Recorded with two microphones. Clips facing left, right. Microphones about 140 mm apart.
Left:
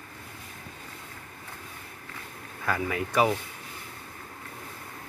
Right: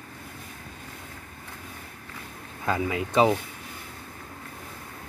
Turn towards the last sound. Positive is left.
turn(degrees=-20)  # may be behind; listen again after turning